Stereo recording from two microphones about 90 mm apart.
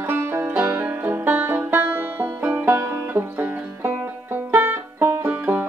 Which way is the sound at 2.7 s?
35° right (ahead or behind).